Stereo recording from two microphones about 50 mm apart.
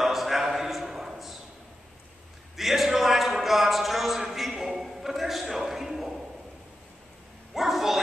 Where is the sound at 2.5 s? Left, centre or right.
Centre.